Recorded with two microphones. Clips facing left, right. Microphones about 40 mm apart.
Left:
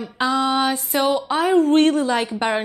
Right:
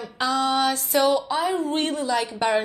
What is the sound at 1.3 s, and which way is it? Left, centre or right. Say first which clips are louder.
A woman's voice: left 7 dB; left.